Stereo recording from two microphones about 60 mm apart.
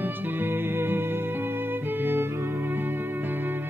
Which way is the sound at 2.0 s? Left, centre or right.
Right.